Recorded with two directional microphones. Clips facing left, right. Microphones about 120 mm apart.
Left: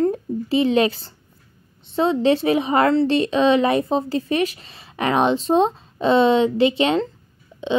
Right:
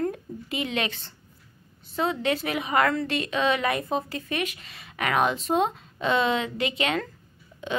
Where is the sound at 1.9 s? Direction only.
30° left (ahead or behind).